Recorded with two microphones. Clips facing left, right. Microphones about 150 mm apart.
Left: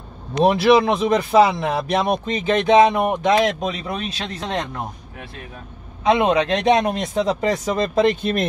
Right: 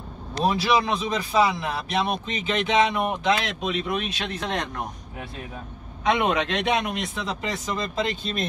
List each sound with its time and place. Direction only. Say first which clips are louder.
0.5 s speech: left 7 dB; 60° left (ahead or behind); by 4.8 s 30° left (ahead or behind)
6.0 s speech: left 6 dB; 30° left (ahead or behind); by 8.5 s 55° left (ahead or behind)